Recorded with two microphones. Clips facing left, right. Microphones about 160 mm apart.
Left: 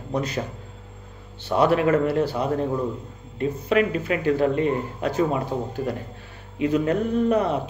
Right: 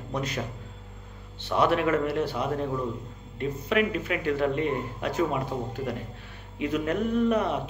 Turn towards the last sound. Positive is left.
turn(degrees=35)  # may be behind; listen again after turning